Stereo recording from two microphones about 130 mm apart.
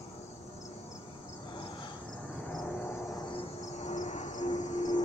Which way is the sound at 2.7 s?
15° left (ahead or behind).